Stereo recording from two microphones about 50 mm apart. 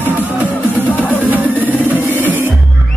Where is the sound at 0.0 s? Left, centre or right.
Right.